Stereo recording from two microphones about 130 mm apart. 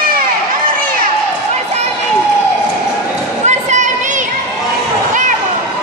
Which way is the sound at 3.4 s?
65° right (ahead or behind).